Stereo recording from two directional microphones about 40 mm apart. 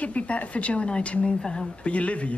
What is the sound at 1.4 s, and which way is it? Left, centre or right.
Speech, centre.